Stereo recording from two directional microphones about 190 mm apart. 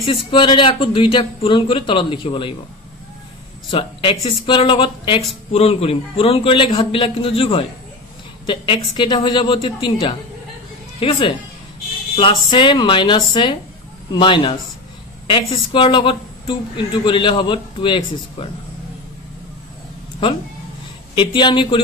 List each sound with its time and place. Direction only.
0.0 s speech: 30° left (ahead or behind)
3.7 s speech: 30° left (ahead or behind)
21.1 s speech: 25° left (ahead or behind)